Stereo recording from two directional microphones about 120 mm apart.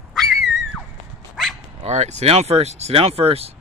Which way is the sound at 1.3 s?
Centre (ahead or behind).